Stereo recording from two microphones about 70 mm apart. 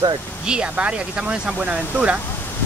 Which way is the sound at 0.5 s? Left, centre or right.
Centre.